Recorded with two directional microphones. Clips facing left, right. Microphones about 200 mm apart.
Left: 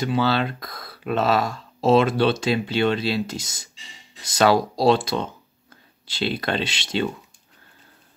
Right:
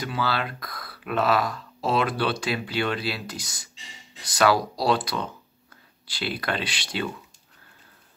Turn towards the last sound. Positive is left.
turn(degrees=25)  # may be behind; listen again after turning